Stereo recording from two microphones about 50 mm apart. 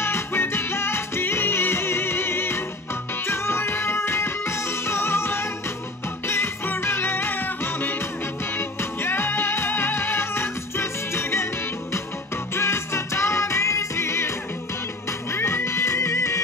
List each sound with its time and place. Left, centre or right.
0.0 s music: left